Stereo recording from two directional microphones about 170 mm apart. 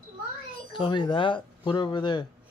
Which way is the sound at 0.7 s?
30° left (ahead or behind).